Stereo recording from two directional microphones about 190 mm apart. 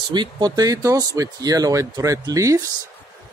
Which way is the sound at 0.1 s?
20° right (ahead or behind).